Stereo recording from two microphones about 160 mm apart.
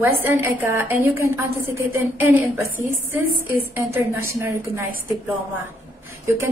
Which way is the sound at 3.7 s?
15° right (ahead or behind).